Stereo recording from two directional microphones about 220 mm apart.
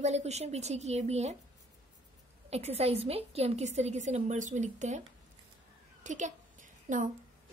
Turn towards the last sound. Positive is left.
turn(degrees=-35)  # may be behind; listen again after turning